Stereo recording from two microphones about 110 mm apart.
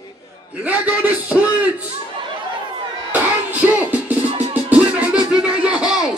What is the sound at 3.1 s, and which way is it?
Music, 15° right (ahead or behind).